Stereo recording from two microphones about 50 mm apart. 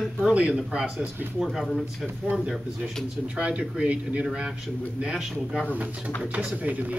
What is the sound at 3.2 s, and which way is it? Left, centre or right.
Speech, right.